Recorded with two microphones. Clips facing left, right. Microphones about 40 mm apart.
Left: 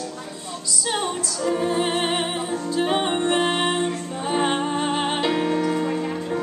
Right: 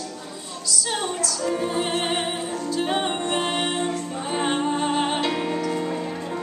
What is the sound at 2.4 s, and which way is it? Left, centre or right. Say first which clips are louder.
Music: left 2 dB; left.